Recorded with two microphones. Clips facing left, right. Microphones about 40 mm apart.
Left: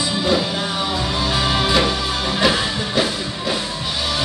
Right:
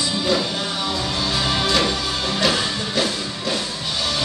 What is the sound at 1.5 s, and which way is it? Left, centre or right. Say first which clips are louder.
Music: left 2 dB; centre.